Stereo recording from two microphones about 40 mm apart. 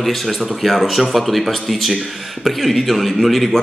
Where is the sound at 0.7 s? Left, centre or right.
Centre.